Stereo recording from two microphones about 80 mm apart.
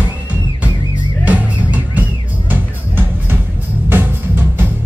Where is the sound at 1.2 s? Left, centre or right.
Centre.